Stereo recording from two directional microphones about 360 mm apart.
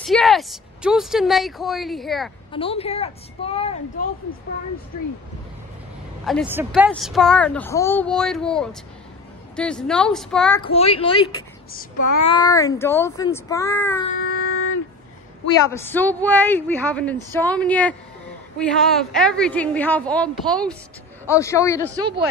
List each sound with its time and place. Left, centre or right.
0.0 s speech: centre
2.5 s speech: centre
6.2 s speech: centre
10.6 s speech: centre
12.3 s speech: centre
14.2 s a sound: left
15.7 s speech: centre
21.9 s speech: centre